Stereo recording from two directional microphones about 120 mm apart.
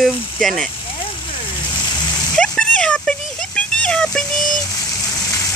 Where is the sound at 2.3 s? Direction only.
5° left (ahead or behind).